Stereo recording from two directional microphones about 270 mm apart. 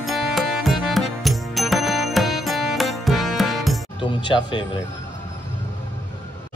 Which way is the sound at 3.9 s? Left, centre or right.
Centre.